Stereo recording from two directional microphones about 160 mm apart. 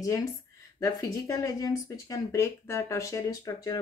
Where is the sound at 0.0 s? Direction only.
20° left (ahead or behind).